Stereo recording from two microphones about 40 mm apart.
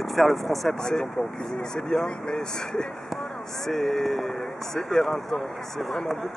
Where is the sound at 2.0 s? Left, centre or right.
Centre.